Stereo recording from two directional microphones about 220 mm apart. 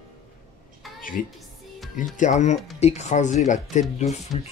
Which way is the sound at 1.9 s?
35° left (ahead or behind).